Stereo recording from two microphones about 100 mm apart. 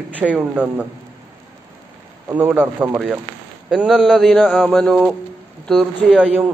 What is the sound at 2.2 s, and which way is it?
Speech, 20° right (ahead or behind).